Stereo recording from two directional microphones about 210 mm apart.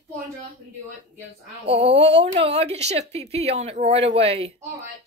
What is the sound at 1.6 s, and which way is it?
Speech, 30° right (ahead or behind).